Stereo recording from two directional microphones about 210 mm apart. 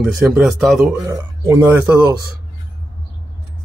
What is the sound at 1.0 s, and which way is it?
Speech, 15° right (ahead or behind).